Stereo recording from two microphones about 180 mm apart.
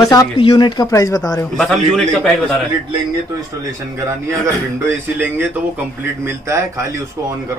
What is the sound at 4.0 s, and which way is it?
A man's voice, 15° right (ahead or behind).